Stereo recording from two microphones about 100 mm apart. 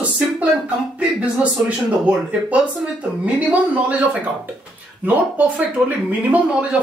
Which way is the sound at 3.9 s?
15° right (ahead or behind).